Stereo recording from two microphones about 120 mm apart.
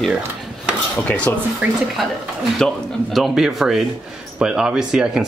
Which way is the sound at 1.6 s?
15° right (ahead or behind).